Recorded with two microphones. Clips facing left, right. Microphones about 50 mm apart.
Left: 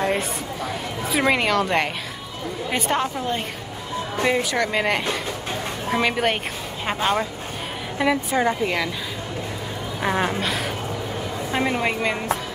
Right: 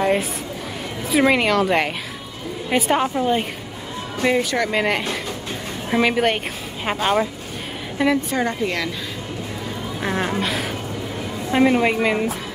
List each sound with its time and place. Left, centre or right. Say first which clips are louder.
0.0 s a sound: right 3 dB; centre
1.1 s a woman's voice: right 3 dB; centre
4.2 s speech: right 2 dB; centre
8.0 s a woman's voice: right 1 dB; centre
9.9 s a woman's voice: left 1 dB; centre